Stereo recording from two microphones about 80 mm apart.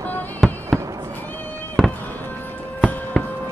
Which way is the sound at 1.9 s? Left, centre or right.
Left.